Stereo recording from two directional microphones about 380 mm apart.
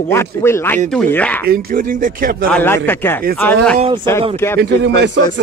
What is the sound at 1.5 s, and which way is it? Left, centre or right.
Speech, right.